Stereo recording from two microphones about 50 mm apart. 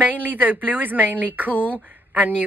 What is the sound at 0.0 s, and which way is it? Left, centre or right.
Speech, right.